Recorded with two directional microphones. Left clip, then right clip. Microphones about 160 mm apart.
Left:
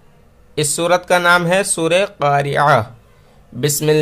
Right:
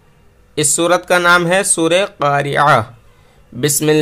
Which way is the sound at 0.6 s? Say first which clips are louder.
Right 2 dB; 15° right (ahead or behind).